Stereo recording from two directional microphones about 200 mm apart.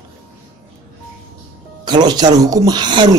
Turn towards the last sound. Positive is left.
turn(degrees=-20)  # may be behind; listen again after turning